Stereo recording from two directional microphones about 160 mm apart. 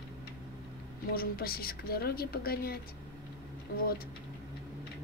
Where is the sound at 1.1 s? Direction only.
70° left (ahead or behind).